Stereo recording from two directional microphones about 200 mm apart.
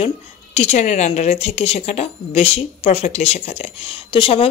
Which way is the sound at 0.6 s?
35° left (ahead or behind).